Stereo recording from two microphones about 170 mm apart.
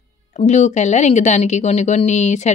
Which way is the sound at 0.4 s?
45° left (ahead or behind).